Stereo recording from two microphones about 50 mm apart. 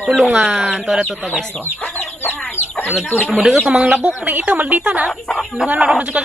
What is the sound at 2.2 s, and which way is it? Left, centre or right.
Chicken, left.